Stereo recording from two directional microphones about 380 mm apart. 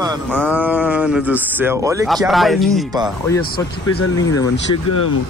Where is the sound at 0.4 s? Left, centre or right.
Centre.